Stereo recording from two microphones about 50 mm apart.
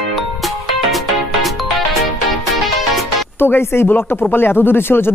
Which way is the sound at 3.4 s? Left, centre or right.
Left.